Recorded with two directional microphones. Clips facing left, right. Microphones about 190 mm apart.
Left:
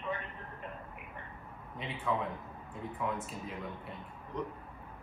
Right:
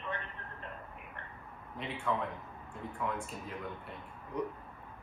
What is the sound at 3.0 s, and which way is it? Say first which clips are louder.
Speech: even; centre (ahead or behind).